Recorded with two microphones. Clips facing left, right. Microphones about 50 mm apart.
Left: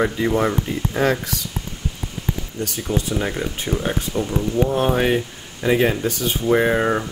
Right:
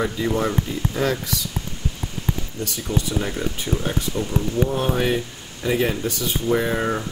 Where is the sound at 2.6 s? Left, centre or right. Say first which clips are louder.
Left 2 dB; left.